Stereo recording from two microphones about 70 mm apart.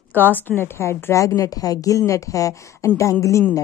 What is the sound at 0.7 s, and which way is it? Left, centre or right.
A woman's voice, left.